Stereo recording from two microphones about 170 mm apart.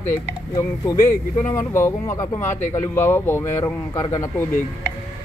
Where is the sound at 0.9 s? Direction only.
20° left (ahead or behind).